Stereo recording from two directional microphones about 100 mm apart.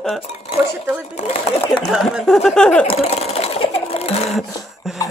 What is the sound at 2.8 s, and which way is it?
Sewing machine, 90° left.